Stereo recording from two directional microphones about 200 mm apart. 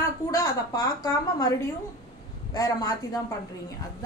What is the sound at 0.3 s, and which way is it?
A woman's voice, 15° left (ahead or behind).